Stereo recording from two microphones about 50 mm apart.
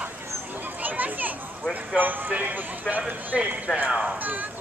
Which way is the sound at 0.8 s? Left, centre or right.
Right.